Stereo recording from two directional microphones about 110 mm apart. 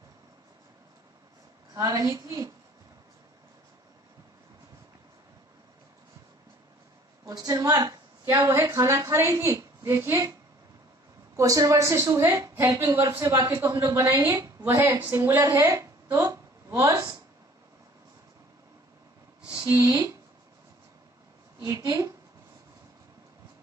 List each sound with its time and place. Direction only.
1.7 s a woman's voice: 35° right (ahead or behind)
7.2 s a woman's voice: 35° right (ahead or behind)
11.3 s a woman's voice: 30° right (ahead or behind)
19.7 s a woman's voice: 25° right (ahead or behind)
21.5 s a woman's voice: 30° right (ahead or behind)